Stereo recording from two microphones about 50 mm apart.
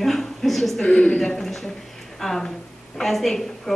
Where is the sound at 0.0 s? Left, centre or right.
Centre.